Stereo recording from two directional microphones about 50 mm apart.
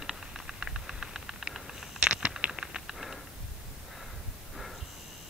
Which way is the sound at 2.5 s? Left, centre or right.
Centre.